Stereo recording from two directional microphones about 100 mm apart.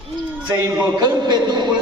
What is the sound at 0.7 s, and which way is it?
A man's voice, 45° right (ahead or behind).